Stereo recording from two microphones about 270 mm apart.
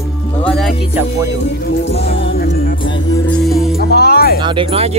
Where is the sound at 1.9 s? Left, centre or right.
Left.